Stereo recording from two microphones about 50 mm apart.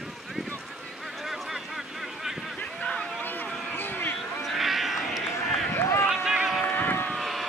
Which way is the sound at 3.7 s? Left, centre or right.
Left.